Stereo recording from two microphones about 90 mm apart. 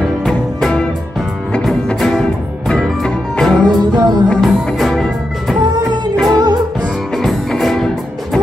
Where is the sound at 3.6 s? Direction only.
50° right (ahead or behind).